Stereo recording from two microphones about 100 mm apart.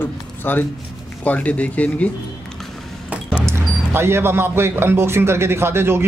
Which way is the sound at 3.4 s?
25° right (ahead or behind).